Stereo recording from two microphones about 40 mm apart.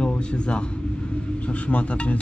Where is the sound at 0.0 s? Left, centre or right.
Left.